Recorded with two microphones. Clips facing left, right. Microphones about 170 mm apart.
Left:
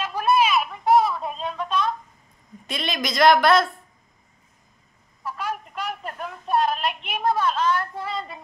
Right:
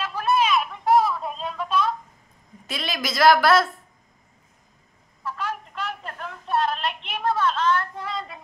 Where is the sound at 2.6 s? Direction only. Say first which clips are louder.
Left 2 dB; 5° right (ahead or behind).